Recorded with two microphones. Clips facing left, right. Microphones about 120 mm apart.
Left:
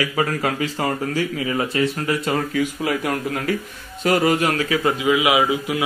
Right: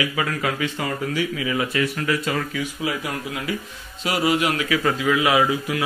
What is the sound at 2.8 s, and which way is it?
A man's voice, 50° left (ahead or behind).